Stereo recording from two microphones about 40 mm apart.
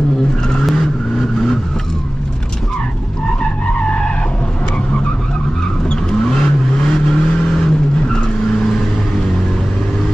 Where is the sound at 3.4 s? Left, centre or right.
Left.